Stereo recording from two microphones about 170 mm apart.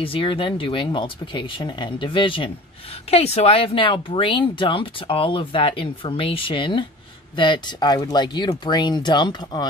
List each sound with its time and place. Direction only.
0.0 s speech: 30° left (ahead or behind)